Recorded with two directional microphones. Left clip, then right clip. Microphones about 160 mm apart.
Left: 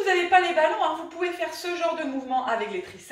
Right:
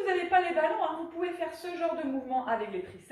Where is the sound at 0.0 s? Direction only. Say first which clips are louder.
Left 6 dB; 5° left (ahead or behind).